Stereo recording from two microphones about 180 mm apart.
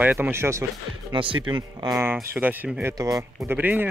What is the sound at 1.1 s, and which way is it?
Speech, 25° right (ahead or behind).